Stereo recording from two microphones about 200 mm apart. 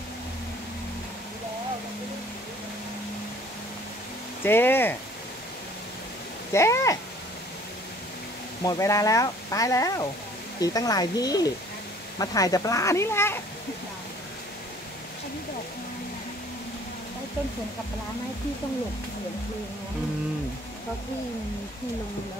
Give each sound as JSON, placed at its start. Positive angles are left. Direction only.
{"t": 4.4, "sound": "speech", "side_deg": 10}
{"t": 6.5, "sound": "speech", "side_deg": 15}
{"t": 8.6, "sound": "speech", "side_deg": 15}